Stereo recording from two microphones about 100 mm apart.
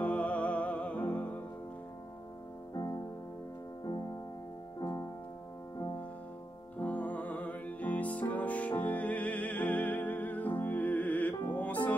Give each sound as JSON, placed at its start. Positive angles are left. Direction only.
{"t": 0.0, "sound": "music", "side_deg": 15}
{"t": 2.7, "sound": "music", "side_deg": 40}
{"t": 4.7, "sound": "music", "side_deg": 40}
{"t": 6.8, "sound": "music", "side_deg": 15}